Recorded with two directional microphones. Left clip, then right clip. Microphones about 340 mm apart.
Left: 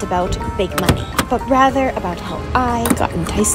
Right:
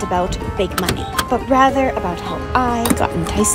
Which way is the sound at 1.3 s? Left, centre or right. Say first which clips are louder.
Even; centre.